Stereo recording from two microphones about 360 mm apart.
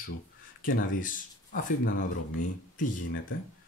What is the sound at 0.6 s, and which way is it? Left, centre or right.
Speech, left.